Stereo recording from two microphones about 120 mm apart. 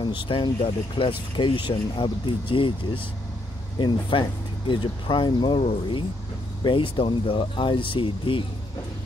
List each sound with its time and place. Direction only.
0.3 s speech: 45° left (ahead or behind)